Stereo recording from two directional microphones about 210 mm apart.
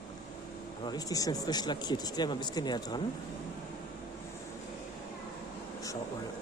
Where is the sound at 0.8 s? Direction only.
15° left (ahead or behind).